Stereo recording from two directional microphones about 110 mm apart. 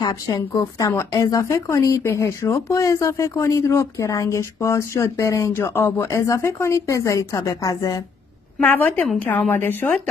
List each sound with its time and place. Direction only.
0.0 s speech: 35° left (ahead or behind)
8.6 s a woman's voice: 15° left (ahead or behind)